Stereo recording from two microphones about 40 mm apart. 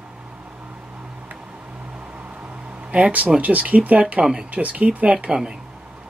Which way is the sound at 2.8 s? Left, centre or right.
Right.